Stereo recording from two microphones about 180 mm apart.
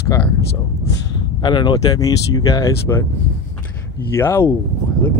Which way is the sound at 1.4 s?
25° left (ahead or behind).